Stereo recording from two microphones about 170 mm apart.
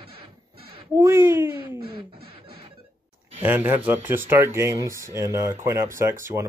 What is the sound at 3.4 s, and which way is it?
Speech, 10° right (ahead or behind).